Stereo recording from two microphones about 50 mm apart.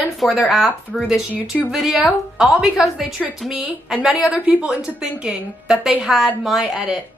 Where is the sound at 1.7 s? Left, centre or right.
Centre.